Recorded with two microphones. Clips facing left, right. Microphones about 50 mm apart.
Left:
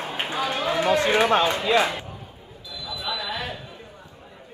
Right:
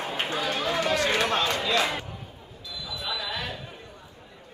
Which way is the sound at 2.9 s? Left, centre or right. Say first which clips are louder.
Left 3 dB; centre.